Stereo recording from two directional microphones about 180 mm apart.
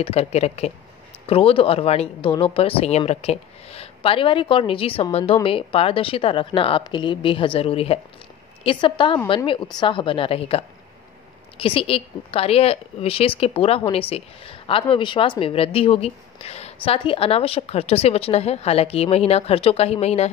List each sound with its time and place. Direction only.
0.0 s a woman's voice: 35° left (ahead or behind)